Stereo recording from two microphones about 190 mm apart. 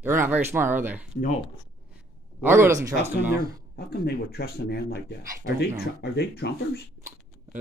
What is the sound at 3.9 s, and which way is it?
Speech, 55° left (ahead or behind).